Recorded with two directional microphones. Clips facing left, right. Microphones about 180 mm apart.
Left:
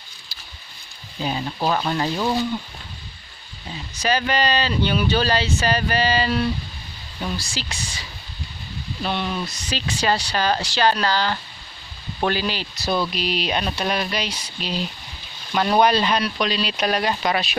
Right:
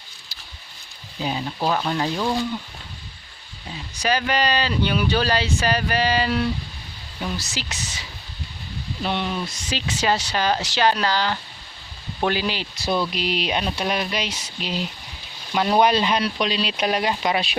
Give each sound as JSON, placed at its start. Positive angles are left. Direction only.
{"t": 1.2, "sound": "speech", "side_deg": -5}
{"t": 4.0, "sound": "speech", "side_deg": -10}
{"t": 7.4, "sound": "speech", "side_deg": -20}
{"t": 9.0, "sound": "speech", "side_deg": -15}
{"t": 13.6, "sound": "speech", "side_deg": -10}
{"t": 16.7, "sound": "speech", "side_deg": -10}